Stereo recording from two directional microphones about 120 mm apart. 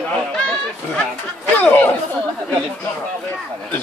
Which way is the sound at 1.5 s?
15° left (ahead or behind).